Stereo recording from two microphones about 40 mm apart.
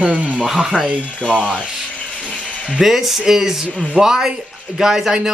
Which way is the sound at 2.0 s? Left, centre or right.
Left.